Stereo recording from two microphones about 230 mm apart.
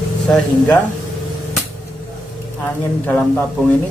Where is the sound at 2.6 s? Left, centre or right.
Centre.